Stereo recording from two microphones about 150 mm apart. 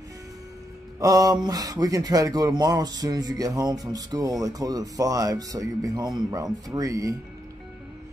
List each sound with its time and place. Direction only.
0.9 s speech: 25° right (ahead or behind)